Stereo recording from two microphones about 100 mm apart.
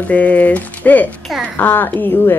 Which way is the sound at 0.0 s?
15° left (ahead or behind).